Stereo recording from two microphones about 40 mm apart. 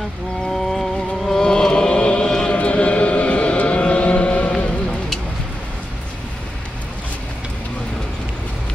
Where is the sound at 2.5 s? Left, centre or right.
Left.